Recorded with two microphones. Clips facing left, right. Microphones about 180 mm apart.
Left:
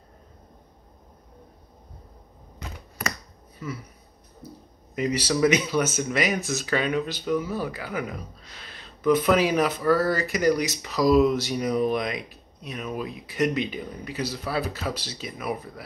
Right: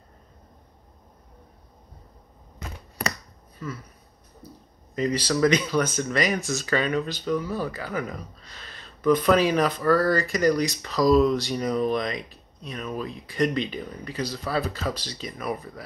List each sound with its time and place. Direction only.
3.5 s speech: 10° left (ahead or behind)
4.9 s speech: 10° left (ahead or behind)